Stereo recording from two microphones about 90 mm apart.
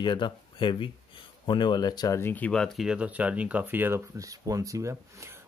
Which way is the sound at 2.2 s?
20° left (ahead or behind).